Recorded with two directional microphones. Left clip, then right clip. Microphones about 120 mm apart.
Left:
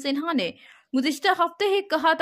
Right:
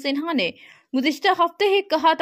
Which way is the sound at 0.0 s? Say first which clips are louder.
Right 3 dB; 15° right (ahead or behind).